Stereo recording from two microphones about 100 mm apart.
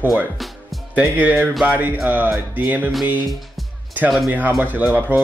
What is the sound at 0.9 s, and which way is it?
Speech, 15° right (ahead or behind).